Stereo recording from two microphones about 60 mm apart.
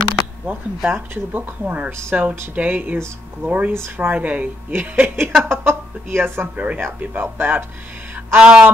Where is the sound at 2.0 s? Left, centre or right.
Right.